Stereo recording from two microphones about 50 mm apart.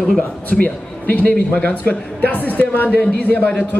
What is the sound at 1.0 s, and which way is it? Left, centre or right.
A man's voice, left.